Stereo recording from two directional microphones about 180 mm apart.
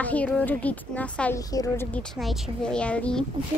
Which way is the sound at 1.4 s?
20° left (ahead or behind).